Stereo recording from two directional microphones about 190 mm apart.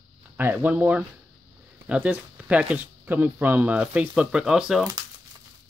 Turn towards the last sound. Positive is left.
turn(degrees=-5)  # may be behind; listen again after turning